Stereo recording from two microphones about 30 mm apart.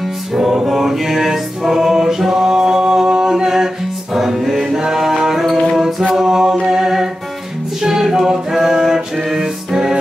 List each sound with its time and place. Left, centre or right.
0.4 s music: centre
6.1 s mantra: centre
6.7 s music: centre